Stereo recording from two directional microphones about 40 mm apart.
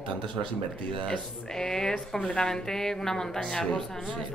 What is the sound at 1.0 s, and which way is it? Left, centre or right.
A woman's voice, left.